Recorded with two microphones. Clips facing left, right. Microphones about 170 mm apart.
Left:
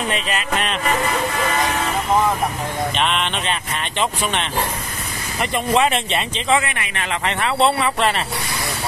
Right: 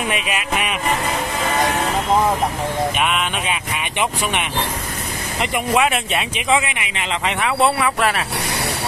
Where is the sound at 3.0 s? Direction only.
5° right (ahead or behind).